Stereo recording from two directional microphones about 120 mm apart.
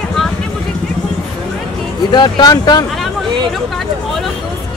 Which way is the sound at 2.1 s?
35° left (ahead or behind).